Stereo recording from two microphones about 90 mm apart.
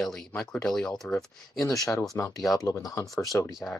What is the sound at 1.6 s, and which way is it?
Speech, 40° left (ahead or behind).